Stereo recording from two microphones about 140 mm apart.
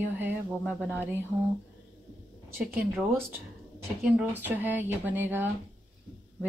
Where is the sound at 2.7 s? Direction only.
15° right (ahead or behind).